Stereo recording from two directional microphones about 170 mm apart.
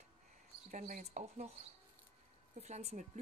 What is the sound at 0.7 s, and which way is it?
Speech, 50° right (ahead or behind).